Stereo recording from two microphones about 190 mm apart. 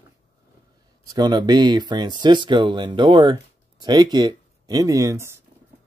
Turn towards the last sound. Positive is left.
turn(degrees=-15)  # may be behind; listen again after turning